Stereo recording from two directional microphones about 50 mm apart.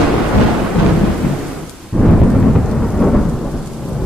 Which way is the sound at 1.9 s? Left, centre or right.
Centre.